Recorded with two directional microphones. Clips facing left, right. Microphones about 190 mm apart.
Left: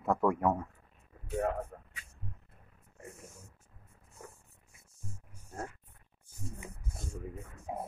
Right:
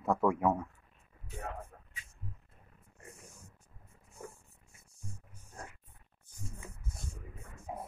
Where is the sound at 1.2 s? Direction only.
70° left (ahead or behind).